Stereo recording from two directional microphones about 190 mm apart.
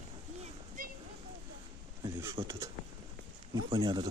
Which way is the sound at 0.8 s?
45° right (ahead or behind).